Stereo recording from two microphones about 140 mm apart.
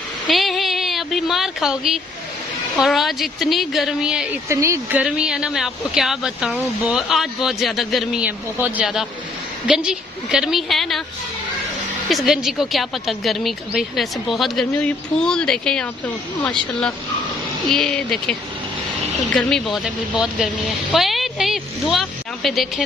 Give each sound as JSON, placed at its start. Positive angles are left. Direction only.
{"t": 0.3, "sound": "a sound", "side_deg": 0}
{"t": 2.8, "sound": "speech", "side_deg": 0}
{"t": 4.5, "sound": "speech", "side_deg": -20}
{"t": 5.0, "sound": "speech", "side_deg": -5}
{"t": 12.1, "sound": "speech", "side_deg": 0}
{"t": 19.3, "sound": "a woman's voice", "side_deg": 0}